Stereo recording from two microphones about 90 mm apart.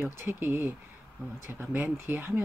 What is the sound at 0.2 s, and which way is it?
Speech, 25° right (ahead or behind).